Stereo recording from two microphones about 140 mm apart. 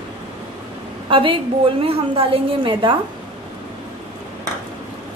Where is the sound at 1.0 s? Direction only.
40° right (ahead or behind).